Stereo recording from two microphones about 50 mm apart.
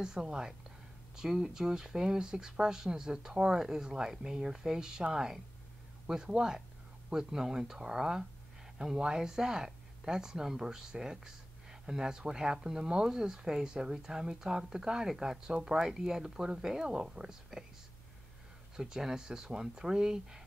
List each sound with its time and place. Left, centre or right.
0.0 s speech: centre
18.8 s speech: centre